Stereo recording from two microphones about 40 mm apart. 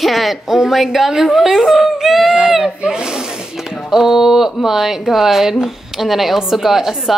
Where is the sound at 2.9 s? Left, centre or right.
Centre.